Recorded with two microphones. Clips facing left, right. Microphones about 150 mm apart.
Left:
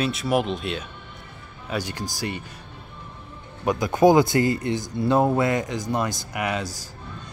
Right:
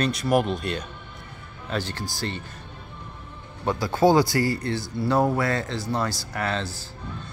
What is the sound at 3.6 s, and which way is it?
Speech, 20° left (ahead or behind).